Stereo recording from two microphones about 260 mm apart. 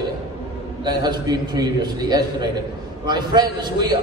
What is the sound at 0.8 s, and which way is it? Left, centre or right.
A man's voice, centre.